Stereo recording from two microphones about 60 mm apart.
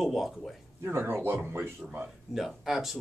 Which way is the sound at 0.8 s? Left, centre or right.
Right.